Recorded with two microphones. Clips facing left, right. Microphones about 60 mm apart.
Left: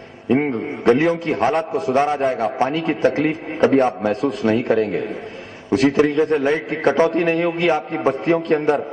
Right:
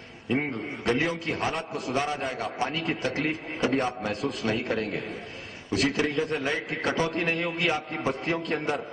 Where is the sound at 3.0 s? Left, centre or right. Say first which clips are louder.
Left 11 dB; left.